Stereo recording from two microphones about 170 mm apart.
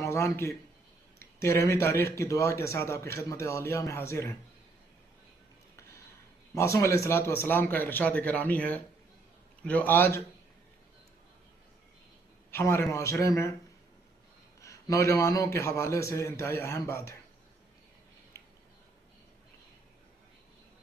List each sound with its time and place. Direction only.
0.0 s a man's voice: 15° left (ahead or behind)
6.5 s a man's voice: 15° left (ahead or behind)
12.4 s a man's voice: 15° left (ahead or behind)
14.6 s a man's voice: 20° left (ahead or behind)